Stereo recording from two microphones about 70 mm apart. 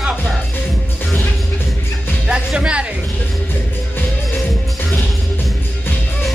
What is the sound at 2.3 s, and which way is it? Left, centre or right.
Music, centre.